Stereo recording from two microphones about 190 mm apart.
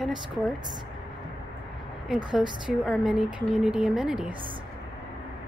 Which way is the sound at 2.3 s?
5° right (ahead or behind).